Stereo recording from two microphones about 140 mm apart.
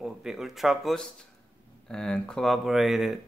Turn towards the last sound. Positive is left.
turn(degrees=0)  # may be behind; listen again after turning